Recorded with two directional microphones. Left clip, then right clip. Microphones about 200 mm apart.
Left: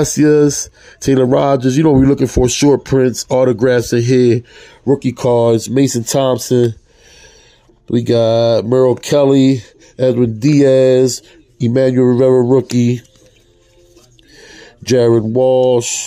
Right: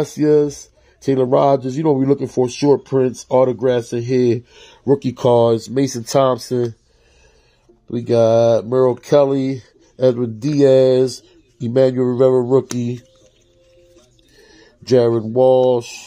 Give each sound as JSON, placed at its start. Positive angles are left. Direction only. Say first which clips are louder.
{"t": 0.0, "sound": "speech", "louder": "left 4 dB", "side_deg": 25}
{"t": 5.4, "sound": "speech", "louder": "left 3 dB", "side_deg": 20}
{"t": 7.9, "sound": "speech", "louder": "left 2 dB", "side_deg": 20}
{"t": 14.4, "sound": "speech", "louder": "left 9 dB", "side_deg": 15}